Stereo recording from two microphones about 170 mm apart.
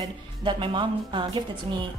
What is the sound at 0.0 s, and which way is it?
A woman's voice, 25° right (ahead or behind).